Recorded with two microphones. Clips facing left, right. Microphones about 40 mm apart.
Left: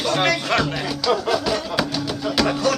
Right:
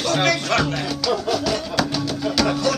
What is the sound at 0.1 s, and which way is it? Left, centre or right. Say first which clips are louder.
Music: right 1 dB; centre.